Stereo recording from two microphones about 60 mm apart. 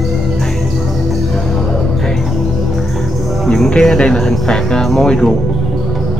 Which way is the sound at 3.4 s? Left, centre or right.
Centre.